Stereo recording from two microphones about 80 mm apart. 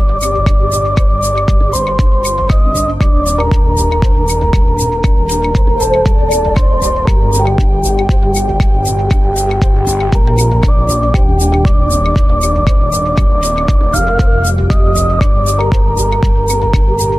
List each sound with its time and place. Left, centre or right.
5.9 s music: centre